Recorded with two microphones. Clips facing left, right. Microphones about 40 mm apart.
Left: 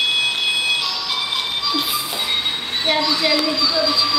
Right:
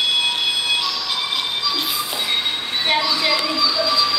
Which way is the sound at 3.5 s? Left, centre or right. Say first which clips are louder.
Left 1 dB; centre.